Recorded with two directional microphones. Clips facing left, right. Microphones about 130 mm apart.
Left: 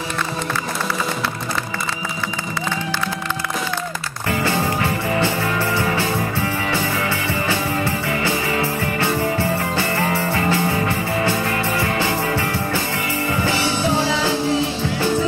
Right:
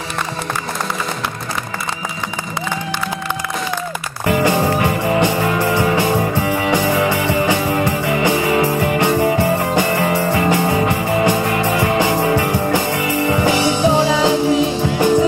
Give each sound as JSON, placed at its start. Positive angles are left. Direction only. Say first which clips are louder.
{"t": 4.3, "sound": "music", "louder": "right 5 dB", "side_deg": -15}